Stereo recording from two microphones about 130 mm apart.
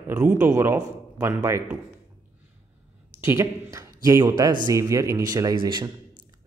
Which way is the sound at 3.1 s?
15° right (ahead or behind).